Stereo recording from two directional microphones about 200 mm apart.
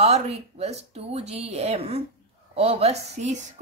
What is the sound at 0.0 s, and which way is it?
A woman's voice, 30° right (ahead or behind).